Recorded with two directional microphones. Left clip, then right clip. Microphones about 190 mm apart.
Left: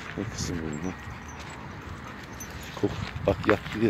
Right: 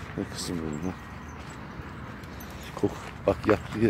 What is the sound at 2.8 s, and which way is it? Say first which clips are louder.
Speech: even; 5° right (ahead or behind).